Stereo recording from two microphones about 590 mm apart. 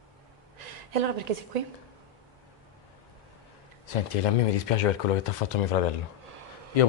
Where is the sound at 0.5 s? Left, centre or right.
Right.